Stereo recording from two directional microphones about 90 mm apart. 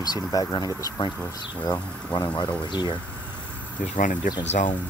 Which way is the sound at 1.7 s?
50° left (ahead or behind).